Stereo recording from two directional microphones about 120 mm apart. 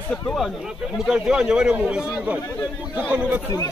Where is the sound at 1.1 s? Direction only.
5° right (ahead or behind).